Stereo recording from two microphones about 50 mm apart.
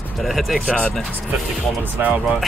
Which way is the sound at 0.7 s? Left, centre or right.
Left.